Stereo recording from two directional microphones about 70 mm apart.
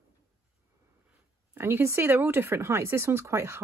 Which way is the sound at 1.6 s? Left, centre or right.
Right.